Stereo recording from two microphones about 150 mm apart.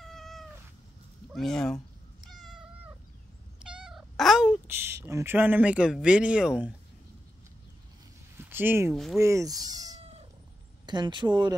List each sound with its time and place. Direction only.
0.0 s cat: centre (ahead or behind)
1.3 s speech: centre (ahead or behind)
2.2 s cat: centre (ahead or behind)
3.6 s speech: 5° right (ahead or behind)
8.4 s speech: 15° right (ahead or behind)
8.9 s speech: centre (ahead or behind)
9.2 s speech: 20° right (ahead or behind)